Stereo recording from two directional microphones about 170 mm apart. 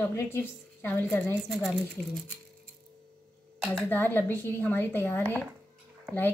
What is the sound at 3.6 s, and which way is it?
Speech, 5° right (ahead or behind).